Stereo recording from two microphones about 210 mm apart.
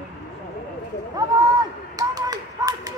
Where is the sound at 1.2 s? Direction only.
20° right (ahead or behind).